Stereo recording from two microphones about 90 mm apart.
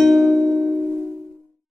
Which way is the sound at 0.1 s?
Centre (ahead or behind).